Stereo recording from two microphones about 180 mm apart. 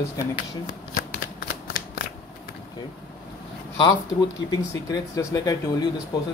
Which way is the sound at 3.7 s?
25° left (ahead or behind).